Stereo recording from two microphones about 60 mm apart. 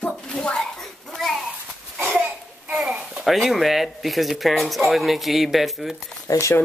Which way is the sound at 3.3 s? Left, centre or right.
Centre.